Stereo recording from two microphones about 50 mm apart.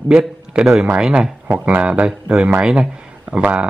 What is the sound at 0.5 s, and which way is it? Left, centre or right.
A man's voice, centre.